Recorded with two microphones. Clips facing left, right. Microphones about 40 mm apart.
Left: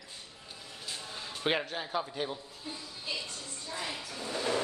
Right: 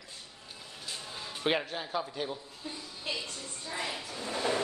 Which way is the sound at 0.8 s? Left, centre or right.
Centre.